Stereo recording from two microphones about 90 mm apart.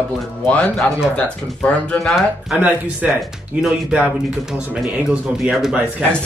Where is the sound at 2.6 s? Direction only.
15° right (ahead or behind).